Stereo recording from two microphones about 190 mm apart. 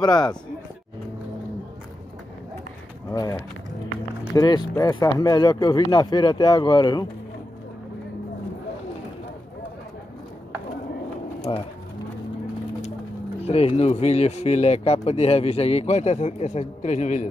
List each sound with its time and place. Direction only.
0.0 s speech: 20° left (ahead or behind)
3.1 s speech: 15° left (ahead or behind)
11.5 s speech: 30° left (ahead or behind)
13.5 s speech: 30° left (ahead or behind)